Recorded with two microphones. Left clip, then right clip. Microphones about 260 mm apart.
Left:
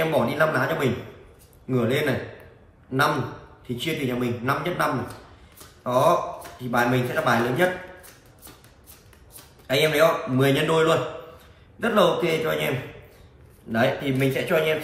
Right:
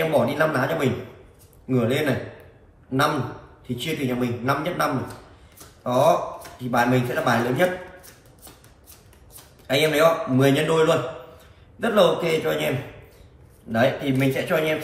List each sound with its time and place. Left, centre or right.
0.1 s a man's voice: centre
3.6 s a man's voice: centre
9.7 s a man's voice: centre